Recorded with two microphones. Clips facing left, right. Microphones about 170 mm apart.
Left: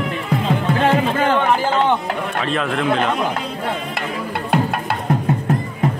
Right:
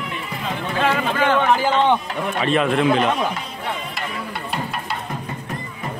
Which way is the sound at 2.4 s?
5° right (ahead or behind).